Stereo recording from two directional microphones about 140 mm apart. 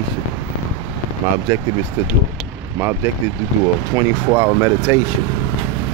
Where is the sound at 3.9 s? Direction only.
20° right (ahead or behind).